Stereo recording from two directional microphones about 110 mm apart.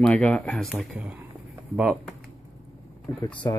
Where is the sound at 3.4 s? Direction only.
30° left (ahead or behind).